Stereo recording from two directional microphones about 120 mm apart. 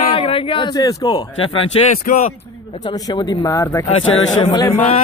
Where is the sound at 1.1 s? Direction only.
50° left (ahead or behind).